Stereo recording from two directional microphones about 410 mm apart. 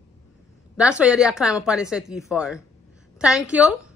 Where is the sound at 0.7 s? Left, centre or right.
Centre.